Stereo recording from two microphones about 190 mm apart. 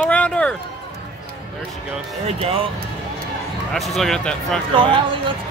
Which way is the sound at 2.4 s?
30° right (ahead or behind).